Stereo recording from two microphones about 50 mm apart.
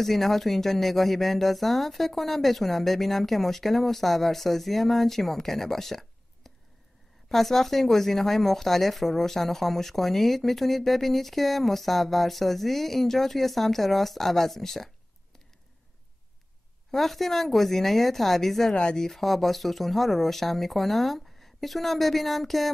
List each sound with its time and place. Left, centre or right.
0.0 s speech: centre
16.9 s speech: centre